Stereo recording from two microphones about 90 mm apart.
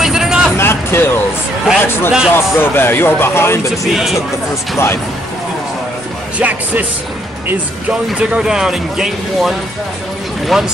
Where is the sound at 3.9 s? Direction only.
5° right (ahead or behind).